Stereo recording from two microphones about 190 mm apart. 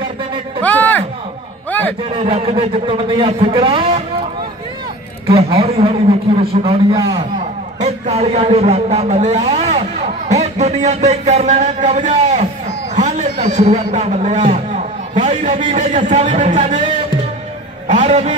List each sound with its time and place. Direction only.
0.6 s a sound: 10° left (ahead or behind)
2.1 s a man's voice: 30° right (ahead or behind)
5.2 s a man's voice: 30° right (ahead or behind)
17.8 s a man's voice: 40° right (ahead or behind)